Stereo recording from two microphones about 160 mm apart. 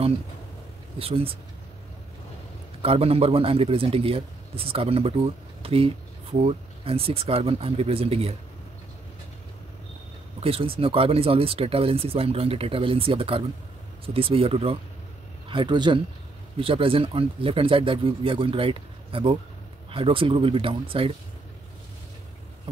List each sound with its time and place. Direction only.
0.9 s speech: 35° right (ahead or behind)
2.8 s speech: 35° right (ahead or behind)
10.4 s a man's voice: 35° right (ahead or behind)